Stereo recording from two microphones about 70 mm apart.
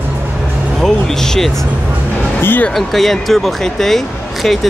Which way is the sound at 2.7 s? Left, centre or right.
Centre.